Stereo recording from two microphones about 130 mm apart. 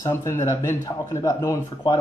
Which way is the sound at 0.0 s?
20° left (ahead or behind).